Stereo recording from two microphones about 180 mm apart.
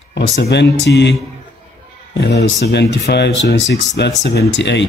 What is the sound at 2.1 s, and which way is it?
A man's voice, 65° left (ahead or behind).